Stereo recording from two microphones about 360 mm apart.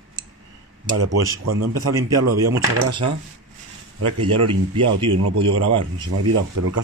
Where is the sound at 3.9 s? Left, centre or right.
Right.